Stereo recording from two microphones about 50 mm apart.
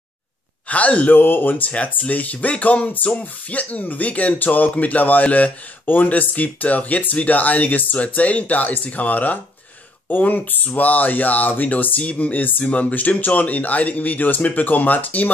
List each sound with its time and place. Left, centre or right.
0.7 s speech: left
1.1 s speech: left